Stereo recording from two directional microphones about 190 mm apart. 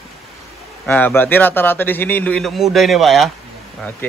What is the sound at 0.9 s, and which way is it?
A man's voice, 10° left (ahead or behind).